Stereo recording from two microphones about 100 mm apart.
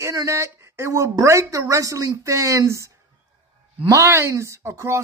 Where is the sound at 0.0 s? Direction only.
30° right (ahead or behind).